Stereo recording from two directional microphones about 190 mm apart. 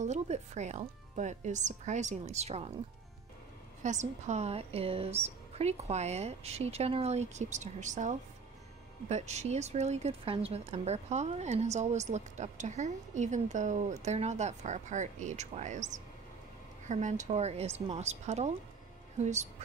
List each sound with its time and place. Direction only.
0.0 s speech: 40° right (ahead or behind)
3.8 s speech: 40° right (ahead or behind)